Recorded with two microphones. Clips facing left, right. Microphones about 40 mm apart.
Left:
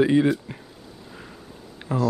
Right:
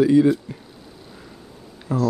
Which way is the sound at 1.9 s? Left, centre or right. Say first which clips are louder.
Right 2 dB; left.